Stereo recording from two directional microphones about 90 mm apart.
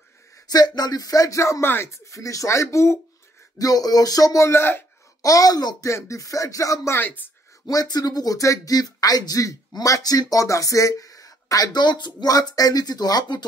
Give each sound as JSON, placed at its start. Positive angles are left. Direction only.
{"t": 0.5, "sound": "speech", "side_deg": 50}
{"t": 3.5, "sound": "speech", "side_deg": 45}
{"t": 5.2, "sound": "speech", "side_deg": 40}
{"t": 5.9, "sound": "speech", "side_deg": 35}
{"t": 7.0, "sound": "speech", "side_deg": 20}
{"t": 7.6, "sound": "speech", "side_deg": 45}